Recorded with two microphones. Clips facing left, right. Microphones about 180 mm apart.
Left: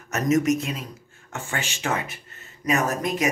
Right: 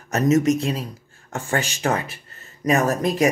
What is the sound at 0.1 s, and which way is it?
Speech, 25° right (ahead or behind).